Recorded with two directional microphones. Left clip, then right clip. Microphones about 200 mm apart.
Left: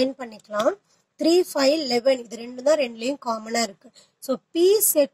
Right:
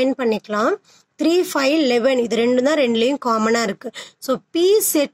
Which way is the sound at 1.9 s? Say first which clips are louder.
Right 5 dB; 10° right (ahead or behind).